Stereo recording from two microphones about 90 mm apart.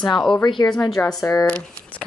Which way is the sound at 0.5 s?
55° left (ahead or behind).